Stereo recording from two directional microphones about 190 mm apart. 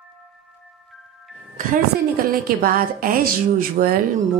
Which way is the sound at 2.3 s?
50° right (ahead or behind).